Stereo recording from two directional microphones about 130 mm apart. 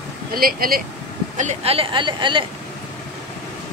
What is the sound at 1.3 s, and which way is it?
Speech, 70° right (ahead or behind).